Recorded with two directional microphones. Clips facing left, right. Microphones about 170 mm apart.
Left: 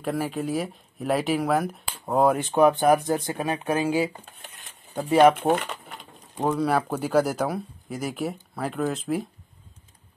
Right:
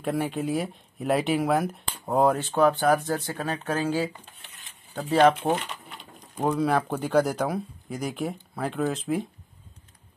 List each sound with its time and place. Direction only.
0.0 s speech: centre (ahead or behind)
2.3 s speech: 15° left (ahead or behind)
5.5 s a sound: 55° left (ahead or behind)
6.4 s speech: centre (ahead or behind)